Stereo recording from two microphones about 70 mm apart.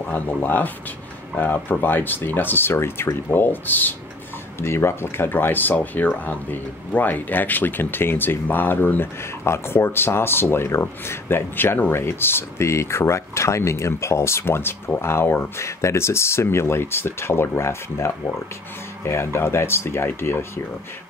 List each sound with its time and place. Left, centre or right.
0.0 s speech: left
4.6 s speech: left